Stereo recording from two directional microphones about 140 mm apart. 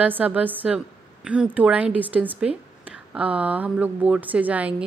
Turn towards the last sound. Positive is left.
turn(degrees=-10)  # may be behind; listen again after turning